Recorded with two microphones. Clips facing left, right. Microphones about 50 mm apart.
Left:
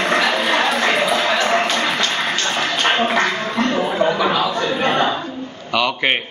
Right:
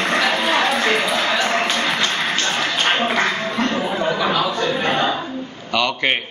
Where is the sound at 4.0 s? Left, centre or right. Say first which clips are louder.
Left 2 dB; centre.